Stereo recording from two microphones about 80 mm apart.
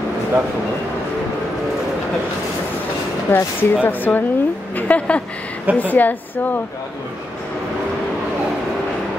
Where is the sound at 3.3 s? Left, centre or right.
Left.